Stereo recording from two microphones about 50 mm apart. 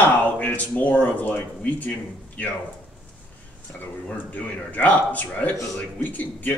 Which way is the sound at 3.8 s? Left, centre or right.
Left.